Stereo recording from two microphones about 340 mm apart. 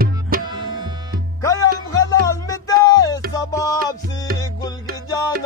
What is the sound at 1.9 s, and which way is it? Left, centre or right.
Music, centre.